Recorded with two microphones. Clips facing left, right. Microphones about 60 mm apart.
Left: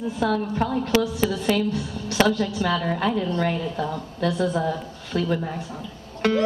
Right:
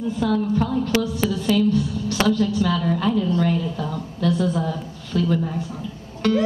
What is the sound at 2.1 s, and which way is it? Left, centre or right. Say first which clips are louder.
A woman's voice: right 1 dB; left.